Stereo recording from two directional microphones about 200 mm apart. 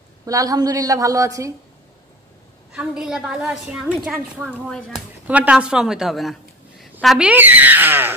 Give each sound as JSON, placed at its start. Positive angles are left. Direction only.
{"t": 0.2, "sound": "a woman's voice", "side_deg": -15}
{"t": 2.7, "sound": "a woman's voice", "side_deg": -5}